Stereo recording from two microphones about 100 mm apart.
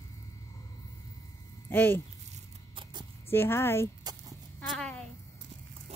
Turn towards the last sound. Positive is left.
turn(degrees=5)  # may be behind; listen again after turning